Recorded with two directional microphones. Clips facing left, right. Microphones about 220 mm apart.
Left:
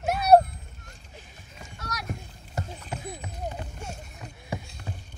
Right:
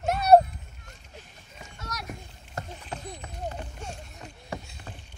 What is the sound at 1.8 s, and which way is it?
Rowboat, centre (ahead or behind).